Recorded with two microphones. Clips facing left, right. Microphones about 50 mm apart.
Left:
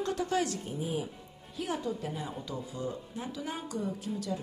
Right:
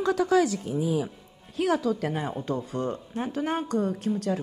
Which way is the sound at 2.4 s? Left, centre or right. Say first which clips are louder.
Right 8 dB; right.